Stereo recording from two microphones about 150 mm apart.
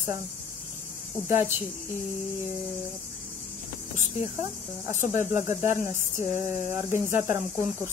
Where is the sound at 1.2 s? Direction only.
15° right (ahead or behind).